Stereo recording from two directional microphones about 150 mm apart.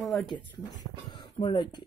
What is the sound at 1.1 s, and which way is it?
Speech, 30° left (ahead or behind).